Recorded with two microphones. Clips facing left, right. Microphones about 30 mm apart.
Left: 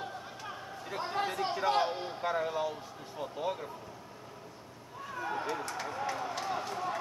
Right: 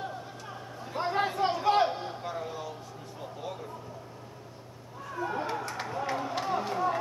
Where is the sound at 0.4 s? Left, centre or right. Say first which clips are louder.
Right 1 dB; centre.